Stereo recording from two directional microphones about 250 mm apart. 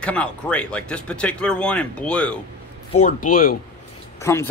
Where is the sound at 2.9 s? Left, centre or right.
Left.